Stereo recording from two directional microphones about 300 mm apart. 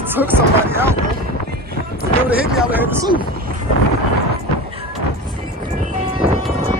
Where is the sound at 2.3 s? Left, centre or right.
Centre.